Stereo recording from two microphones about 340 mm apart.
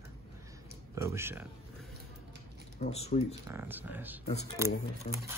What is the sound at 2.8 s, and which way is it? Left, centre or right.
Speech, centre.